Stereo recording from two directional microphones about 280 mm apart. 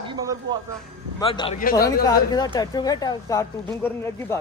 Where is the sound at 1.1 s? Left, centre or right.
Centre.